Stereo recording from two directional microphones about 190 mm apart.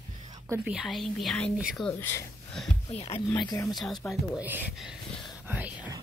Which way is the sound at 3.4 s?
20° left (ahead or behind).